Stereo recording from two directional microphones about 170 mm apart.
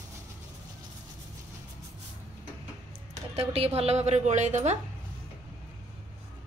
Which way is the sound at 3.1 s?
35° right (ahead or behind).